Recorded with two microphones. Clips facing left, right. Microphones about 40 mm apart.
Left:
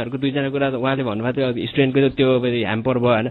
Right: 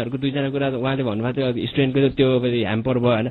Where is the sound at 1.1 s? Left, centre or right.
Left.